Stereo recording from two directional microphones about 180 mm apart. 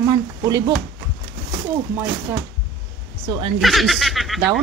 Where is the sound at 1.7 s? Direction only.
10° right (ahead or behind).